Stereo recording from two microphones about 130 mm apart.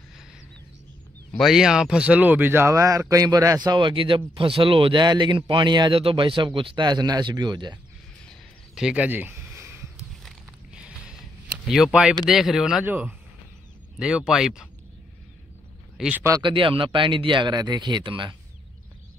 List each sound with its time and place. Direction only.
1.4 s speech: 5° right (ahead or behind); by 7.8 s 35° right (ahead or behind)
8.3 s a sound: 5° right (ahead or behind)
10.2 s a sound: 5° right (ahead or behind)
12.3 s speech: 5° right (ahead or behind)
16.0 s speech: 10° right (ahead or behind)
16.4 s speech: 40° right (ahead or behind)